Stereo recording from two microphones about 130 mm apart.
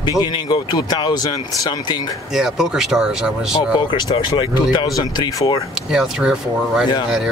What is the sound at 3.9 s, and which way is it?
Speech, 35° left (ahead or behind).